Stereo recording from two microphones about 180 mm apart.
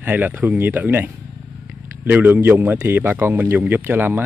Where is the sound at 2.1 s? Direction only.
10° right (ahead or behind).